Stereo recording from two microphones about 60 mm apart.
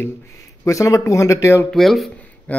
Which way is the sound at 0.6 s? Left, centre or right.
Left.